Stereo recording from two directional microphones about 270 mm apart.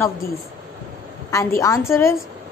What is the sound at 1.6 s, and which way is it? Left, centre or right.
Speech, centre.